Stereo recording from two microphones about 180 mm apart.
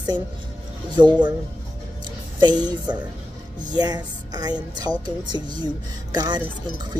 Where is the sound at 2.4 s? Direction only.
25° right (ahead or behind).